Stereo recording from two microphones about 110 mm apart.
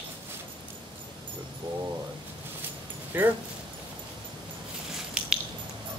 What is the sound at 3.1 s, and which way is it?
Speech, 15° right (ahead or behind).